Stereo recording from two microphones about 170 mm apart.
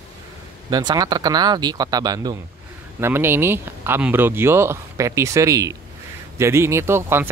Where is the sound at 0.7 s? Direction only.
25° right (ahead or behind).